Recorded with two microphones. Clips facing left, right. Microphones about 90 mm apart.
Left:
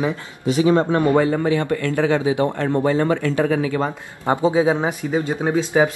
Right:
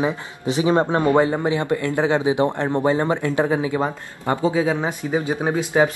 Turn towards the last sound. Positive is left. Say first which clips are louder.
# left 1 dB
turn(degrees=-15)  # may be behind; listen again after turning